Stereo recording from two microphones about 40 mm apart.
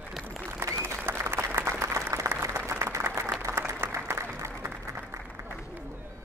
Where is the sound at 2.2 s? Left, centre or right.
Right.